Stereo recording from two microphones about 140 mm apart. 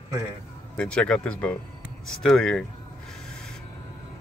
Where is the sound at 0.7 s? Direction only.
5° left (ahead or behind).